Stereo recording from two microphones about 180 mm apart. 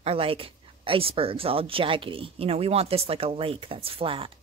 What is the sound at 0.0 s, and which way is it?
A woman's voice, 30° right (ahead or behind).